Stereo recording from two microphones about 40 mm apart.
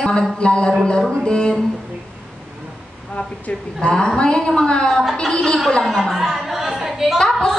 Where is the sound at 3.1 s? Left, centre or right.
Left.